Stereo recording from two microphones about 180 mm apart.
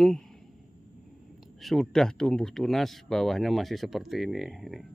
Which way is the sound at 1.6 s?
Centre (ahead or behind).